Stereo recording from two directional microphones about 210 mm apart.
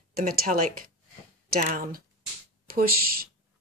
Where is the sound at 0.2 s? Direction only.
40° right (ahead or behind).